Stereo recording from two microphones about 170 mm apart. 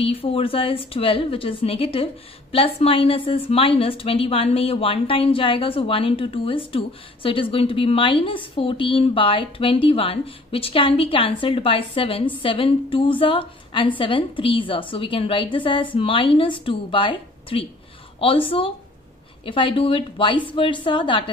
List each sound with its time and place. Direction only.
0.0 s a woman's voice: 35° left (ahead or behind)